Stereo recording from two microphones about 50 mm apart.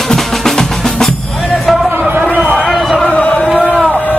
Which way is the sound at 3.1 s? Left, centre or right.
Left.